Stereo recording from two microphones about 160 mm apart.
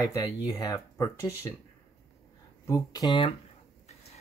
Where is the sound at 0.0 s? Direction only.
20° left (ahead or behind).